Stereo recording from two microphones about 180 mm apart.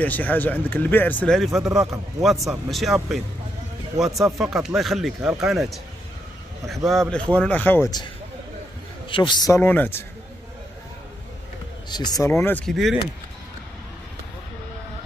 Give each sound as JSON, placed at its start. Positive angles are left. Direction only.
{"t": 0.0, "sound": "speech", "side_deg": 10}
{"t": 6.9, "sound": "speech", "side_deg": 5}
{"t": 9.1, "sound": "a man's voice", "side_deg": 25}
{"t": 9.6, "sound": "speech", "side_deg": 10}
{"t": 11.9, "sound": "speech", "side_deg": 20}